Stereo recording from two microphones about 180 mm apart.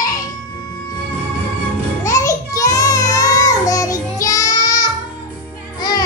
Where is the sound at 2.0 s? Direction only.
15° left (ahead or behind).